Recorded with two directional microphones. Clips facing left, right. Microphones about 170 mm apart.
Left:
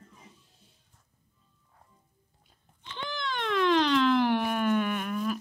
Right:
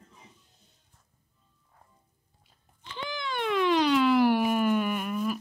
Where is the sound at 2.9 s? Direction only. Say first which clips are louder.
Right 1 dB; 5° right (ahead or behind).